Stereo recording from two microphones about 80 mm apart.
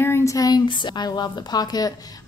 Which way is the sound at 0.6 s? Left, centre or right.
Left.